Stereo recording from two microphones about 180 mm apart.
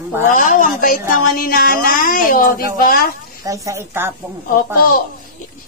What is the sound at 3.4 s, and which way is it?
Speech, 15° right (ahead or behind).